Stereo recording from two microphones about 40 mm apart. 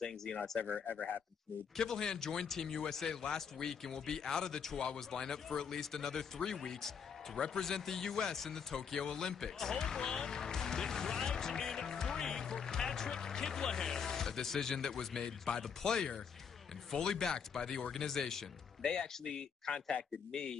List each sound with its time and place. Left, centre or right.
0.0 s a man's voice: centre
1.8 s a man's voice: centre
7.3 s a sound: centre
15.8 s a man's voice: centre